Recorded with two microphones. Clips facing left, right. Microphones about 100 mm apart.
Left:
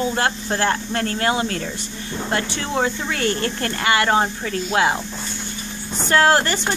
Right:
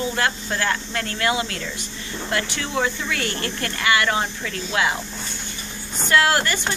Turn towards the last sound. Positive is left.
turn(degrees=35)  # may be behind; listen again after turning